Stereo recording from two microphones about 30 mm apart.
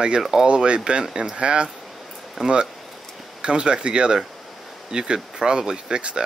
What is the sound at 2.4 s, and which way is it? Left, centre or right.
Speech, centre.